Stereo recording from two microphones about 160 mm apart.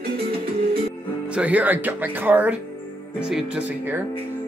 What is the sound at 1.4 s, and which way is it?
Speech, 10° right (ahead or behind).